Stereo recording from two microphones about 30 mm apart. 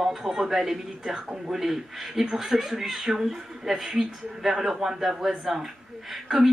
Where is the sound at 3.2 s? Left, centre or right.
Centre.